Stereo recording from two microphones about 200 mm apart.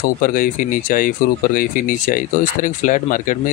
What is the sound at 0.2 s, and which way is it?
Speech, 45° left (ahead or behind).